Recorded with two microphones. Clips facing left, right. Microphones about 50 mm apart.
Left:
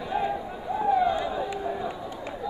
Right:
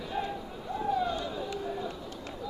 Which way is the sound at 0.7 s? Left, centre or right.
Centre.